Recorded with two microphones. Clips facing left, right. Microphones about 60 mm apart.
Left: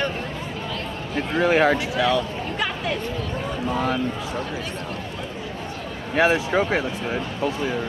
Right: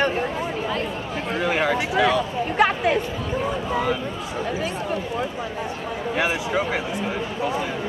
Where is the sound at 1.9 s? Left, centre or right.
Right.